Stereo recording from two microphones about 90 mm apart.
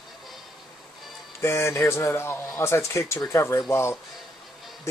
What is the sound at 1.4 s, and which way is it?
A man's voice, 30° left (ahead or behind).